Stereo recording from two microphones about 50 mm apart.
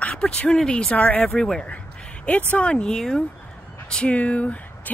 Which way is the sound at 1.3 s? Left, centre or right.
Centre.